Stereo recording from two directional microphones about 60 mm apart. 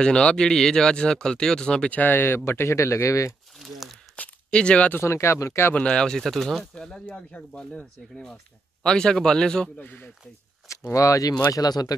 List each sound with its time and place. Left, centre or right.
0.0 s speech: centre
1.9 s speech: left
4.2 s a sound: centre
4.9 s speech: left
5.8 s speech: centre
6.7 s speech: centre
8.8 s speech: centre
9.8 s speech: left
10.7 s speech: left
11.5 s speech: left